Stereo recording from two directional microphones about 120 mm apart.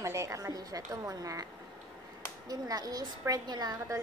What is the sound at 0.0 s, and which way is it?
A woman's voice, 25° right (ahead or behind).